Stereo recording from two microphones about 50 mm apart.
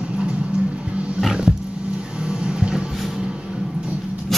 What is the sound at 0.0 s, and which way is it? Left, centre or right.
Roaring cats, right.